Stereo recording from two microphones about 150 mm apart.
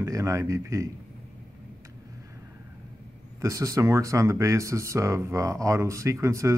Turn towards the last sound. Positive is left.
turn(degrees=-20)  # may be behind; listen again after turning